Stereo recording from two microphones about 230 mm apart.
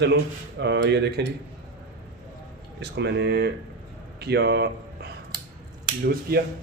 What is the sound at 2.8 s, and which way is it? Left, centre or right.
Speech, right.